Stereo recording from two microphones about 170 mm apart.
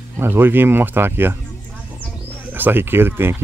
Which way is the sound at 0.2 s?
10° right (ahead or behind).